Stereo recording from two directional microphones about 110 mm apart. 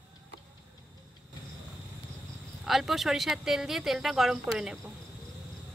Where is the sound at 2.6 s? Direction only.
Centre (ahead or behind).